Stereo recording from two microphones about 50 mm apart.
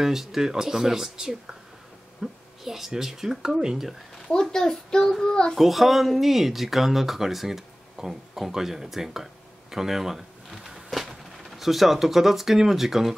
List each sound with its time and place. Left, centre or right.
0.0 s speech: centre
4.3 s a child's voice: centre
5.6 s speech: centre